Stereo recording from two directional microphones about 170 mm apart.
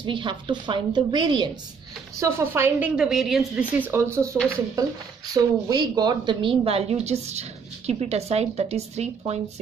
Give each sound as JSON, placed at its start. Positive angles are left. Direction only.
{"t": 0.0, "sound": "a woman's voice", "side_deg": -30}
{"t": 2.1, "sound": "a woman's voice", "side_deg": -15}